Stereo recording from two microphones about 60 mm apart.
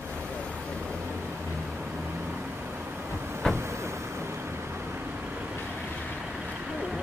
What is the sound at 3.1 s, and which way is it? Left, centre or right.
Vehicle, right.